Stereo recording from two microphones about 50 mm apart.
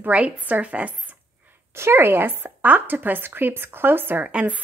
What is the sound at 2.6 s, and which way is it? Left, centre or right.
Speech, right.